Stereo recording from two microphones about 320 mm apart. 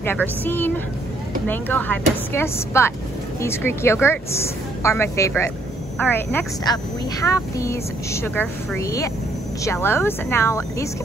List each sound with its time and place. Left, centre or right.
0.0 s a woman's voice: centre